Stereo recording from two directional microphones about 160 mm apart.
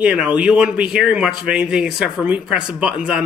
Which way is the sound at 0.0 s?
5° right (ahead or behind).